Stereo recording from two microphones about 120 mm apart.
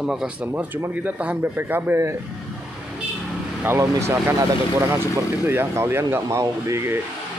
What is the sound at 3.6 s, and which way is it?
Speech, 20° right (ahead or behind).